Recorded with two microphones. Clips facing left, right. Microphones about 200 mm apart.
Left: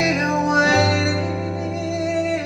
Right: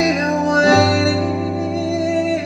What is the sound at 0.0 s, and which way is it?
Music, 35° right (ahead or behind).